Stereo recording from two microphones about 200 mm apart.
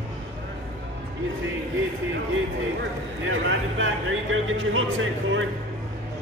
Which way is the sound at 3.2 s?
75° right (ahead or behind).